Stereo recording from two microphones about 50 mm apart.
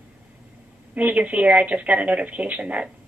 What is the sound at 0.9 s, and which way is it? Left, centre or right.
A woman's voice, right.